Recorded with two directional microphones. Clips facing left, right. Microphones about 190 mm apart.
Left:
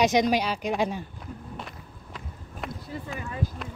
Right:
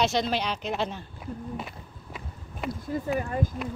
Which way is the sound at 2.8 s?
45° right (ahead or behind).